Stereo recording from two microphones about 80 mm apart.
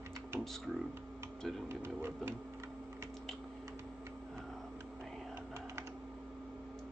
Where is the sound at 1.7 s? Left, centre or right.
Right.